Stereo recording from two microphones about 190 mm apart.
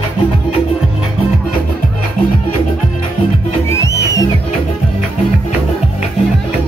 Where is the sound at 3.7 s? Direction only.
15° left (ahead or behind).